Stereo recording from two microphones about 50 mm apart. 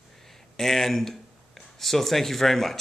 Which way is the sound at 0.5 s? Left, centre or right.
Centre.